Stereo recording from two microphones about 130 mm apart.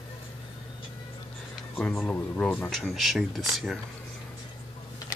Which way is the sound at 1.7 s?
10° left (ahead or behind).